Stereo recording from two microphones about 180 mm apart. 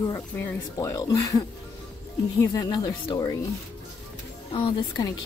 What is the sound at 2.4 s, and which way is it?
Speech, 25° left (ahead or behind).